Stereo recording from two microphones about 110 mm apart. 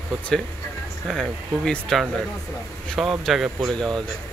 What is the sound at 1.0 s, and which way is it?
Speech, 5° left (ahead or behind).